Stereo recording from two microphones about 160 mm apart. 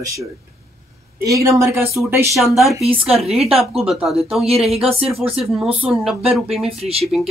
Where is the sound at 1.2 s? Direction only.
20° right (ahead or behind).